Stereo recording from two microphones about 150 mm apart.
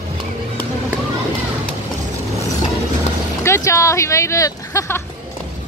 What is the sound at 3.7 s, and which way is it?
A woman's voice, 20° left (ahead or behind).